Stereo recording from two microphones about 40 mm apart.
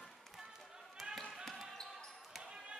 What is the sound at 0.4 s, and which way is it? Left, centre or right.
Basketball bounce, centre.